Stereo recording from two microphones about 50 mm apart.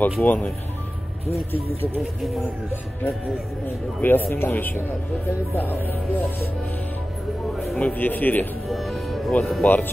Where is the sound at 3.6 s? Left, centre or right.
Left.